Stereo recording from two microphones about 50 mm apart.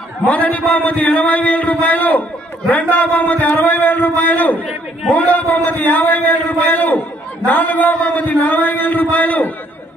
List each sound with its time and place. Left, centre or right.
0.3 s speech: left